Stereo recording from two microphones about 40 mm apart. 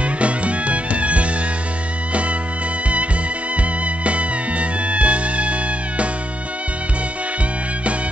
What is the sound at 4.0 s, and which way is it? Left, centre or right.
Music, right.